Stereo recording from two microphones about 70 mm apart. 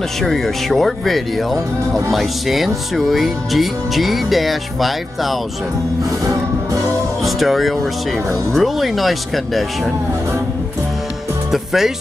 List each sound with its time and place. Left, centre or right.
0.2 s speech: centre
6.2 s music: right
7.2 s speech: centre
11.5 s speech: centre